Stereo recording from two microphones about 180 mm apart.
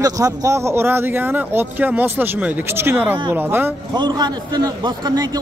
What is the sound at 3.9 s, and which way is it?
A man's voice, 25° right (ahead or behind).